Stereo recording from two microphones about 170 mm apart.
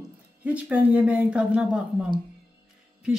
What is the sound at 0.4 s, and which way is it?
A woman's voice, 5° right (ahead or behind).